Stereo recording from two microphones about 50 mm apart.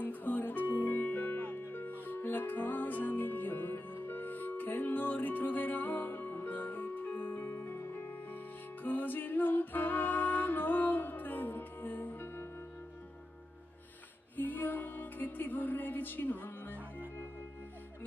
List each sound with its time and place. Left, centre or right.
0.0 s music: left
14.3 s music: left